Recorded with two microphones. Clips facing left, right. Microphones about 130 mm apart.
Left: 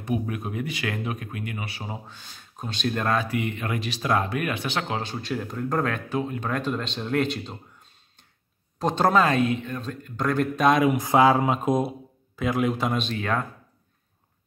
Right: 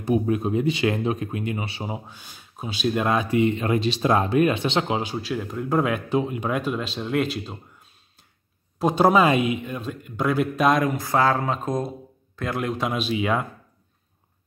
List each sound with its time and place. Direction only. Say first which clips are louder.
0.0 s speech: right 6 dB; 30° right (ahead or behind)
2.0 s speech: right 1 dB; 10° right (ahead or behind)
3.3 s speech: right 7 dB; 25° right (ahead or behind)
5.1 s speech: right 2 dB; centre (ahead or behind)
11.0 s speech: left 3 dB; 15° left (ahead or behind); by 13.5 s 10° right (ahead or behind)